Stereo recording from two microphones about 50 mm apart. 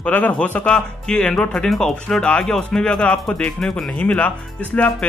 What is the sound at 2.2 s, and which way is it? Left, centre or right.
Speech, left.